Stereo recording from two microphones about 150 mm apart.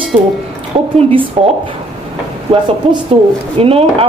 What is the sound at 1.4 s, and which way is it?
Speech, 40° right (ahead or behind).